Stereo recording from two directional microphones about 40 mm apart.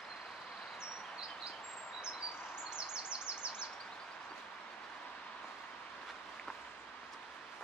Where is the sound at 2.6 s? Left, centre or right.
Right.